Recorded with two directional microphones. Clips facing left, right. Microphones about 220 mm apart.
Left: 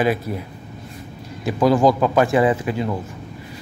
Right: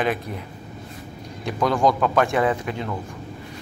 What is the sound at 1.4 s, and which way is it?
Speech, 5° left (ahead or behind).